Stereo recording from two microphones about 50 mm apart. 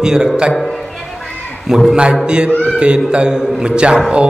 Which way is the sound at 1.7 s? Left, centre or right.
Centre.